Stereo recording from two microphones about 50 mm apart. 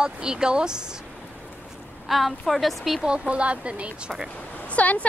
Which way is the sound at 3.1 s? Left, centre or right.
Right.